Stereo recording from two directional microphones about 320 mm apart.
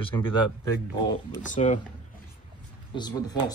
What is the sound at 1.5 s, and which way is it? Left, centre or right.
Speech, left.